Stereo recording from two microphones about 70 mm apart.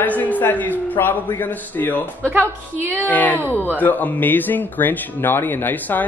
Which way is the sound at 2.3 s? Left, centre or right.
Right.